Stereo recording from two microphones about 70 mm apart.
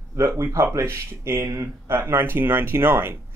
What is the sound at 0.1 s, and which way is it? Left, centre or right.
Speech, right.